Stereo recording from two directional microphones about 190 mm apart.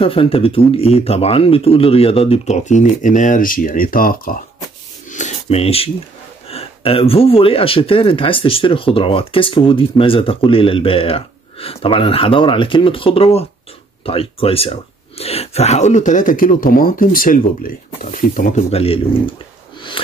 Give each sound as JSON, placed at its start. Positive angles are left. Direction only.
{"t": 0.0, "sound": "speech", "side_deg": 30}
{"t": 5.1, "sound": "a sound", "side_deg": 40}
{"t": 6.5, "sound": "speech", "side_deg": 30}